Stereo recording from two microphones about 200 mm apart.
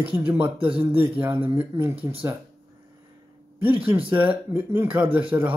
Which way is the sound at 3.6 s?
25° right (ahead or behind).